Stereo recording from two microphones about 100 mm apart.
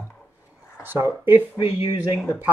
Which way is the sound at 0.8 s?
20° right (ahead or behind).